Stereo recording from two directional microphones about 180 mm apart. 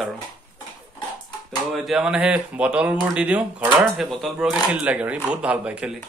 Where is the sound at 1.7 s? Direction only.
Centre (ahead or behind).